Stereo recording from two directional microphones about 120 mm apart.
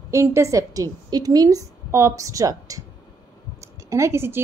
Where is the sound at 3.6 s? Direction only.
25° right (ahead or behind).